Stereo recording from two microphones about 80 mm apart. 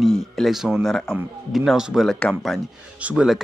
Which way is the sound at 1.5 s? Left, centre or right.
Centre.